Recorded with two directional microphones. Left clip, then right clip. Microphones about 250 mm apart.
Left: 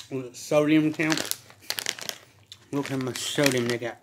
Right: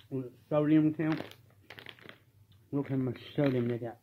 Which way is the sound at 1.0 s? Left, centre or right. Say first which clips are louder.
Left 8 dB; left.